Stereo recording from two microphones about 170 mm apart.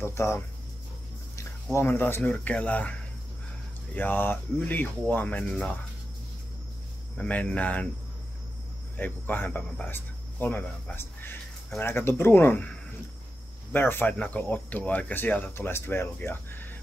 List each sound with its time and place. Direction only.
0.0 s speech: 15° left (ahead or behind)
7.2 s speech: 10° left (ahead or behind)
8.9 s speech: 10° left (ahead or behind)